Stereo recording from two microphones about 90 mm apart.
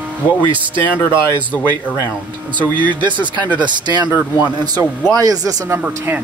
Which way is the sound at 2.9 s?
60° right (ahead or behind).